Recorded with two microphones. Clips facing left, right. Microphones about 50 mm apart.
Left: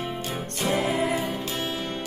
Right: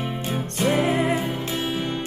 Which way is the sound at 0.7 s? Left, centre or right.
Right.